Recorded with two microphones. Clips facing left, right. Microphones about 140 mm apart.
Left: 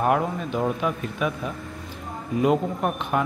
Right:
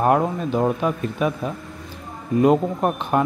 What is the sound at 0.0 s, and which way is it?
Speech, 35° right (ahead or behind).